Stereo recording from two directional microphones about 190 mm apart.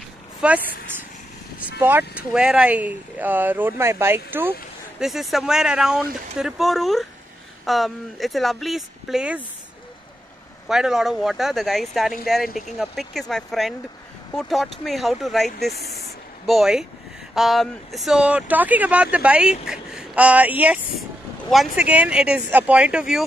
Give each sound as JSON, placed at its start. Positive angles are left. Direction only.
{"t": 0.4, "sound": "speech", "side_deg": -5}
{"t": 1.8, "sound": "speech", "side_deg": -10}
{"t": 5.0, "sound": "speech", "side_deg": 0}
{"t": 10.7, "sound": "speech", "side_deg": 0}
{"t": 15.7, "sound": "speech", "side_deg": 55}
{"t": 16.4, "sound": "speech", "side_deg": 0}